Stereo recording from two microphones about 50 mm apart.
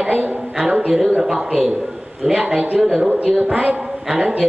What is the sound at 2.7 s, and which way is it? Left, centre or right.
A woman's voice, centre.